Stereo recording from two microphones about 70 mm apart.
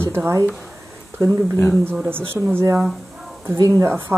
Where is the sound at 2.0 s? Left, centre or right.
Right.